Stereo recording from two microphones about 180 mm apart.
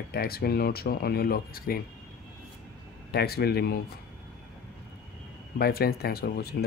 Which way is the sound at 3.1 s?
60° left (ahead or behind).